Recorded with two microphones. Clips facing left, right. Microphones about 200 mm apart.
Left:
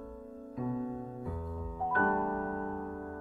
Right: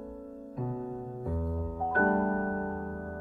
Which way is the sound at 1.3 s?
45° right (ahead or behind).